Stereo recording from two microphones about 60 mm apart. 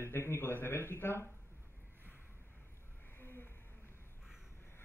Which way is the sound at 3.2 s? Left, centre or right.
Left.